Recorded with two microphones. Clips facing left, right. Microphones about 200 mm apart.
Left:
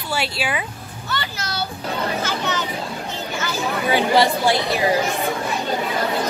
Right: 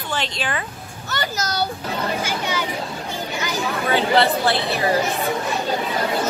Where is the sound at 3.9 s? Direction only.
15° left (ahead or behind).